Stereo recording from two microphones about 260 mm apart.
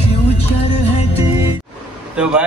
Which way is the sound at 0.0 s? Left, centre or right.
Left.